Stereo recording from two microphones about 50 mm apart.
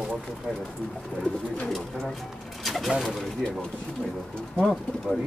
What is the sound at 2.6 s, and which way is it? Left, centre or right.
Bird, centre.